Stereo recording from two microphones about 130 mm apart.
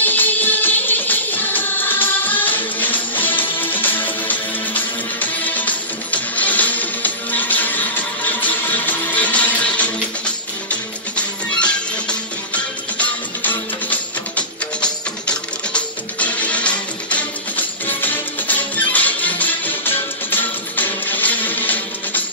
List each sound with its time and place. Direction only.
0.0 s music: 15° left (ahead or behind)